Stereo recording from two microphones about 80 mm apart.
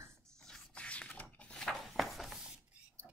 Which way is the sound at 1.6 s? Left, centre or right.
Centre.